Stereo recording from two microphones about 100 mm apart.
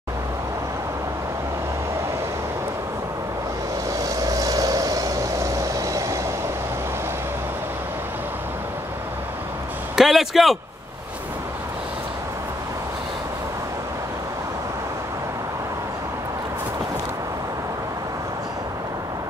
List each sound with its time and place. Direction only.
4.0 s vehicle: 35° right (ahead or behind)
9.9 s speech: centre (ahead or behind)